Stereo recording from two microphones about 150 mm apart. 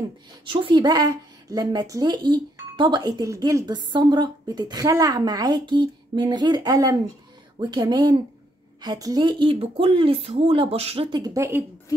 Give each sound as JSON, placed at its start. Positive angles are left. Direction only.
{"t": 0.5, "sound": "a woman's voice", "side_deg": -35}
{"t": 11.1, "sound": "a woman's voice", "side_deg": -20}